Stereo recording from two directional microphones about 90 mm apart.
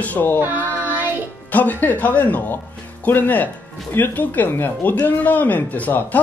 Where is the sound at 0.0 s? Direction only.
20° left (ahead or behind).